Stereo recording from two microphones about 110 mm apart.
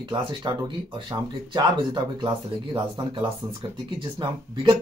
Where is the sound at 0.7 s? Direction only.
45° right (ahead or behind).